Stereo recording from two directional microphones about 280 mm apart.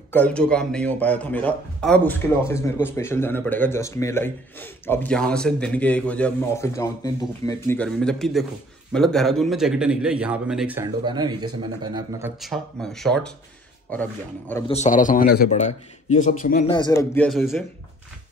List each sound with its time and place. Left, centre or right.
0.1 s a man's voice: centre
12.4 s a man's voice: centre
14.7 s a man's voice: left
16.7 s speech: centre